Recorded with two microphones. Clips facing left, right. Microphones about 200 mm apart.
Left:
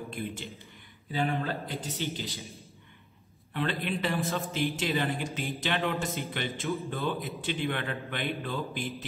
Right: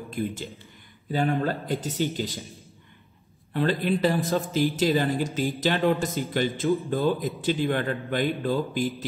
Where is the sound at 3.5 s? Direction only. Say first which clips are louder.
Right 7 dB; 40° right (ahead or behind).